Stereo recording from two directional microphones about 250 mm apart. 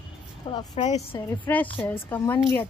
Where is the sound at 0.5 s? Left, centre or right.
Left.